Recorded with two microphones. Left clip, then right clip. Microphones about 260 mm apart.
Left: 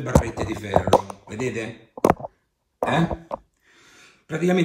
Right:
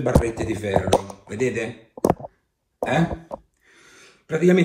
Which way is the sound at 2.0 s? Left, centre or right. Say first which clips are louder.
Left 2 dB; centre.